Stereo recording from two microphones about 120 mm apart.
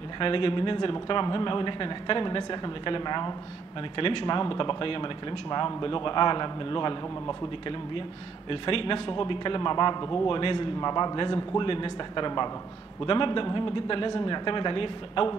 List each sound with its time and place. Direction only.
0.2 s speech: 45° left (ahead or behind)